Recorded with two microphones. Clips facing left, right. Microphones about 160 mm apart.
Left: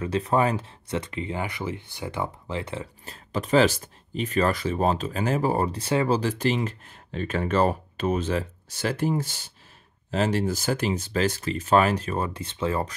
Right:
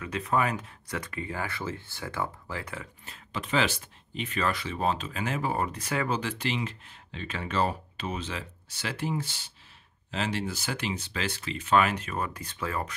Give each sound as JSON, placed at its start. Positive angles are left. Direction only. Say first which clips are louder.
{"t": 0.0, "sound": "speech", "louder": "left 5 dB", "side_deg": 30}
{"t": 3.3, "sound": "speech", "louder": "left 8 dB", "side_deg": 40}